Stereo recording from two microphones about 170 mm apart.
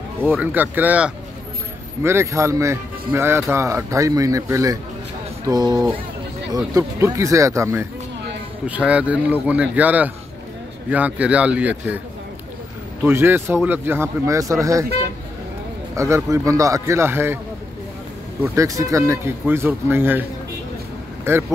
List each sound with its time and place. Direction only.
0.2 s speech: 10° right (ahead or behind)
13.0 s speech: 10° right (ahead or behind)
16.0 s speech: 15° right (ahead or behind)
18.4 s speech: 15° right (ahead or behind)